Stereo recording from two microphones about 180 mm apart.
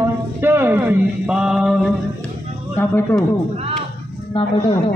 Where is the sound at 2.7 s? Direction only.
10° left (ahead or behind).